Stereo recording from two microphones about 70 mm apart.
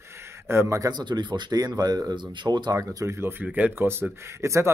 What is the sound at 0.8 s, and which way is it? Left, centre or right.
Speech, right.